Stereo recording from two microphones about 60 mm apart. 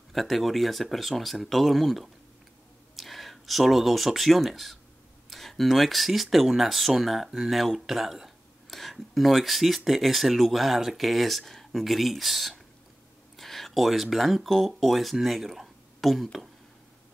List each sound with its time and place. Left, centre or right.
0.1 s speech: centre